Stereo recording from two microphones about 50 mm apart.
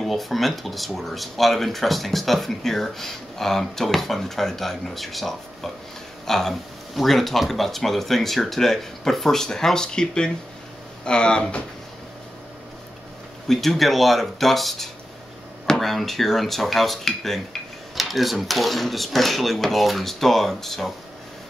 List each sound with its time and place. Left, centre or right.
0.0 s speech: centre
13.5 s speech: centre